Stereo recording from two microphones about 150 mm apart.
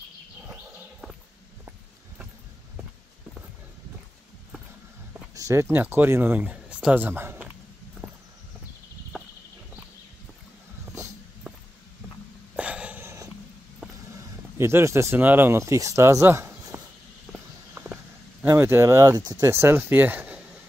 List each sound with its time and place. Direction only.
5.3 s speech: 20° right (ahead or behind)
8.0 s walk: 10° left (ahead or behind)
9.1 s walk: 5° right (ahead or behind)
12.5 s a sound: 10° right (ahead or behind)
14.6 s speech: 15° right (ahead or behind)
18.4 s speech: 15° right (ahead or behind)